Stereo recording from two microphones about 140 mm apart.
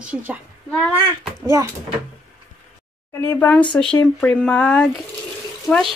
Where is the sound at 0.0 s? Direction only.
10° right (ahead or behind).